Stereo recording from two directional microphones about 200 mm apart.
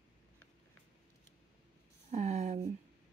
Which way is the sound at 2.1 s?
35° right (ahead or behind).